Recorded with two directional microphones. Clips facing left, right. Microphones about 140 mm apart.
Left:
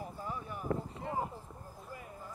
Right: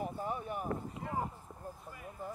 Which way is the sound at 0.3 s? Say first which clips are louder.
Right 4 dB; 60° right (ahead or behind).